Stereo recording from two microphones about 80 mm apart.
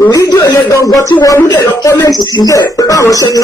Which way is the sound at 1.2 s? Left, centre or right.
Left.